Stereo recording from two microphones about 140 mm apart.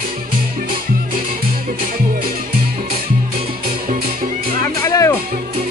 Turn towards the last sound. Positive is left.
turn(degrees=20)  # may be behind; listen again after turning